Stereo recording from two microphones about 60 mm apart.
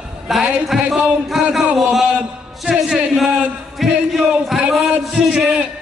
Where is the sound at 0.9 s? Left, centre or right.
Centre.